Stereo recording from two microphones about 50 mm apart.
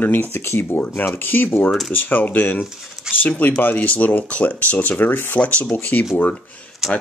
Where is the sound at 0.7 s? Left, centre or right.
Left.